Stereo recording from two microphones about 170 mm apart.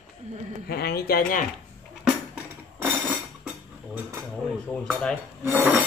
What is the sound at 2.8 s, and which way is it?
Dishes, 10° right (ahead or behind).